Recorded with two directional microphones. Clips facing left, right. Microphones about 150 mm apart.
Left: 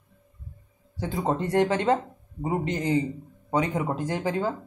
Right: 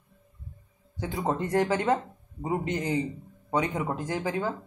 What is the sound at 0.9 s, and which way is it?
Speech, 30° left (ahead or behind).